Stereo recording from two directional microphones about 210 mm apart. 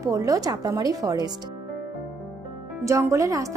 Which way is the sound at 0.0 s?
15° right (ahead or behind).